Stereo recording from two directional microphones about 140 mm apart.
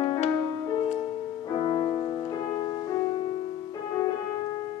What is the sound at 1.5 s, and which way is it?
Music, 35° left (ahead or behind).